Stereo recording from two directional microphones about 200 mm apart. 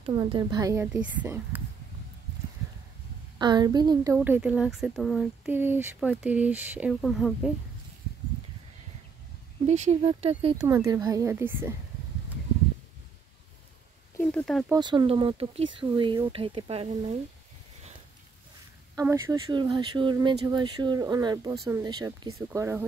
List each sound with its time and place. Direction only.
0.0 s a woman's voice: 25° right (ahead or behind); by 1.6 s 10° right (ahead or behind)
3.3 s a woman's voice: 20° right (ahead or behind); by 7.5 s centre (ahead or behind)
9.7 s speech: 35° right (ahead or behind)
10.7 s a woman's voice: 15° right (ahead or behind)
14.2 s speech: centre (ahead or behind)
14.7 s speech: 20° right (ahead or behind)
18.9 s a woman's voice: 15° right (ahead or behind)
19.5 s a woman's voice: 25° right (ahead or behind)